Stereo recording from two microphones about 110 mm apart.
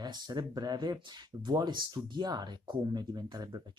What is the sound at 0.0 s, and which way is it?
Speech, 40° right (ahead or behind).